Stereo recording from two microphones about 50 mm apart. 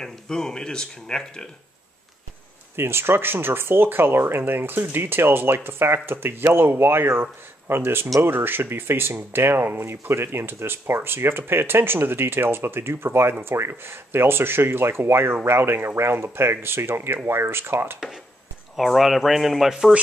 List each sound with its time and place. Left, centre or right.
0.0 s speech: centre
2.7 s speech: right
18.8 s speech: centre